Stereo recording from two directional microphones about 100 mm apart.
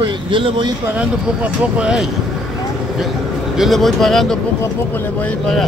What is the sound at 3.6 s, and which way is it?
Speech, centre (ahead or behind).